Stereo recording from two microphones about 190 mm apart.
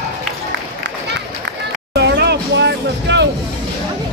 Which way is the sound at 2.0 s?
60° right (ahead or behind).